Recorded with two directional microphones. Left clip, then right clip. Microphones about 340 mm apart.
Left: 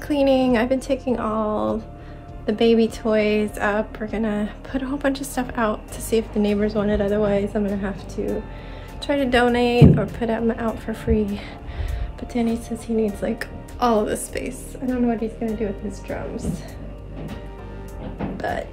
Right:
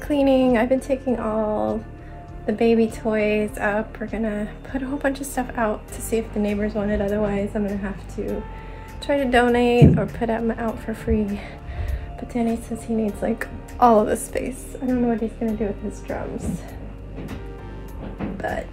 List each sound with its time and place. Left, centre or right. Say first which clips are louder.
0.1 s a woman's voice: even; centre
9.0 s a woman's voice: even; centre